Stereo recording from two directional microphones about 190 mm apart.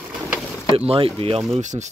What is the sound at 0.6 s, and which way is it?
Speech, 30° right (ahead or behind).